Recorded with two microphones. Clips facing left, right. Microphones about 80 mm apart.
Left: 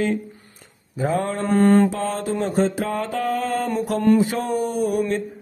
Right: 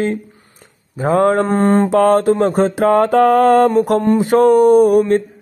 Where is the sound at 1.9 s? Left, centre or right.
Right.